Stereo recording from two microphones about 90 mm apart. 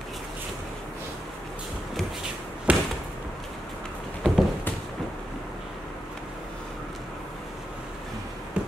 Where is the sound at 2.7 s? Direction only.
15° right (ahead or behind).